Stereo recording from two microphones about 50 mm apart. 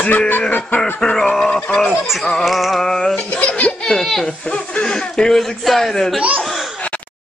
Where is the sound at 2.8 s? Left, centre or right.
Centre.